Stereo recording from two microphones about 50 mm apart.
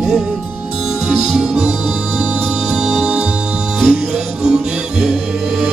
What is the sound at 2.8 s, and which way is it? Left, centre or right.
Music, centre.